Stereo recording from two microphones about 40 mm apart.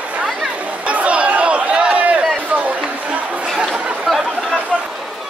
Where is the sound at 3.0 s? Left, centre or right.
Right.